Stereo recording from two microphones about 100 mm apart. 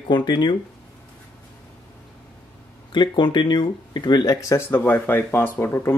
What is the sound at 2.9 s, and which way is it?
Speech, 50° left (ahead or behind).